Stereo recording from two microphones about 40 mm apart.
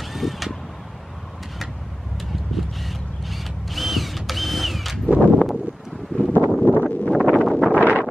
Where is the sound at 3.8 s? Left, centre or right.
Centre.